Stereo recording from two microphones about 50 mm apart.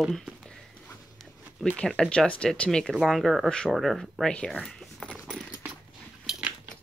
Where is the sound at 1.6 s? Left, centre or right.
Centre.